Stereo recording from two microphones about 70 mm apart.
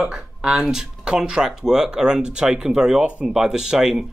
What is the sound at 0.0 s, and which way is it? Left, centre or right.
Speech, centre.